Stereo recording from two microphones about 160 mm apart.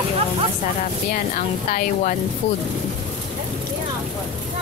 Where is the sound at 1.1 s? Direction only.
60° left (ahead or behind).